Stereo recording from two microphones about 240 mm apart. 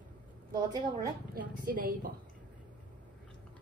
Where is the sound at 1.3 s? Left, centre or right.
Right.